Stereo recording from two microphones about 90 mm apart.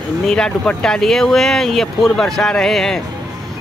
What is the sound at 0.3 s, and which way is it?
Speech, 10° left (ahead or behind).